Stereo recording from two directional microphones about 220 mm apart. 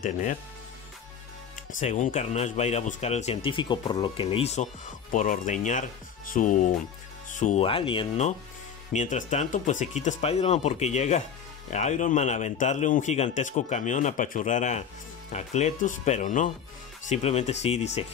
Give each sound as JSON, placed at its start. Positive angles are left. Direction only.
{"t": 0.0, "sound": "a man's voice", "side_deg": 35}
{"t": 1.8, "sound": "a man's voice", "side_deg": 35}